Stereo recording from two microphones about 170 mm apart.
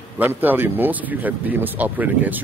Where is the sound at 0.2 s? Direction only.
10° right (ahead or behind).